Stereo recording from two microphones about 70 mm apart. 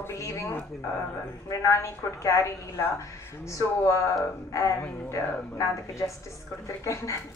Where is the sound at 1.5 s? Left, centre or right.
Left.